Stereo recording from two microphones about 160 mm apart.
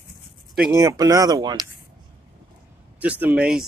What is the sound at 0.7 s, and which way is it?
Speech, 20° right (ahead or behind).